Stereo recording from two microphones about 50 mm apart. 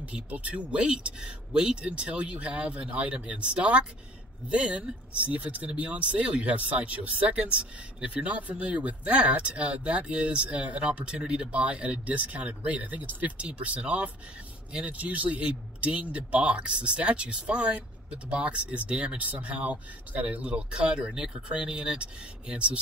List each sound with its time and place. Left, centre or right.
0.0 s speech: right
15.0 s speech: right